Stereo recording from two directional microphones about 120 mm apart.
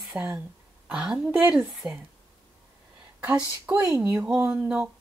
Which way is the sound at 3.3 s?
10° right (ahead or behind).